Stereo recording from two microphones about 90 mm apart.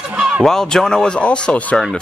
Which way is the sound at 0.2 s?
10° right (ahead or behind).